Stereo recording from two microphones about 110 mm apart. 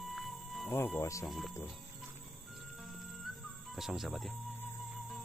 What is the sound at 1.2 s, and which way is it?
Speech, centre (ahead or behind).